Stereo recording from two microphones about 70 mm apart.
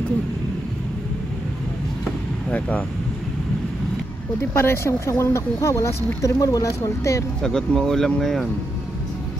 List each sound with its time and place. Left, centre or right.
4.6 s speech: left
7.4 s speech: centre